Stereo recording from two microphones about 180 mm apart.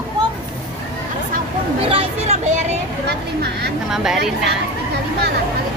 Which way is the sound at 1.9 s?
30° right (ahead or behind).